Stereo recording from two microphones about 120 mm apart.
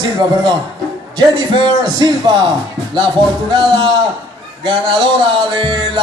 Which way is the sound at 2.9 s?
45° right (ahead or behind).